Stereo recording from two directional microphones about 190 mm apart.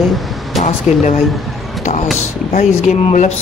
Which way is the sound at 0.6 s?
40° left (ahead or behind).